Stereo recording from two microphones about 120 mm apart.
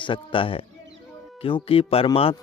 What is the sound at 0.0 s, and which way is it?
Speech, 45° left (ahead or behind).